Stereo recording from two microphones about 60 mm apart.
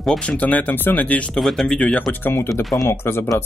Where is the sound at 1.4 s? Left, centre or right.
Centre.